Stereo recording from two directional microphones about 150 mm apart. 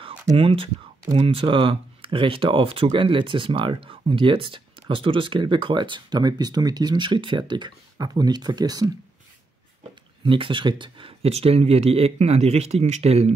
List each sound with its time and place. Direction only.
0.4 s speech: 40° right (ahead or behind)
10.2 s speech: 35° right (ahead or behind)